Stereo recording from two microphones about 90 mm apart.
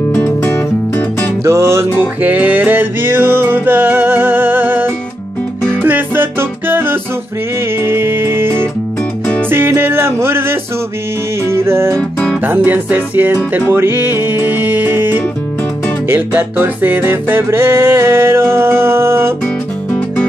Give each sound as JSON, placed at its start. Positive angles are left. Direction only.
{"t": 0.1, "sound": "music", "side_deg": 25}
{"t": 1.4, "sound": "music", "side_deg": -30}
{"t": 2.2, "sound": "music", "side_deg": -15}
{"t": 12.0, "sound": "music", "side_deg": 15}
{"t": 12.4, "sound": "music", "side_deg": -20}
{"t": 19.4, "sound": "music", "side_deg": 15}